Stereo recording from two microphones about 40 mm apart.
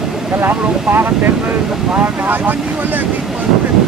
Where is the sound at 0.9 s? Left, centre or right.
Right.